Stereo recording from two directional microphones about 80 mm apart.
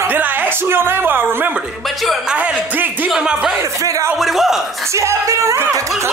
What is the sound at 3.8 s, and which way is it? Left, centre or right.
Music, right.